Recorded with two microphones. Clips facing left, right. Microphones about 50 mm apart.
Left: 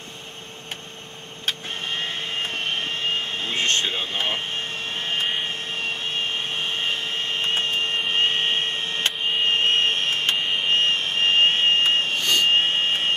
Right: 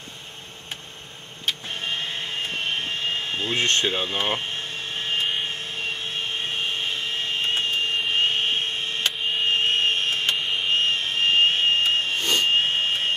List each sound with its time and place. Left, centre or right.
1.4 s vehicle: left
3.5 s speech: left
4.1 s speech: right
4.6 s a sound: left
12.4 s jet engine: left